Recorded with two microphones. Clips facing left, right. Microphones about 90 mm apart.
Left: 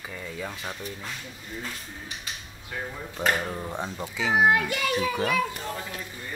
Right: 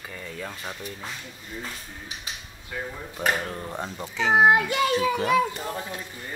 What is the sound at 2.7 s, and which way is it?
Speech, 5° right (ahead or behind).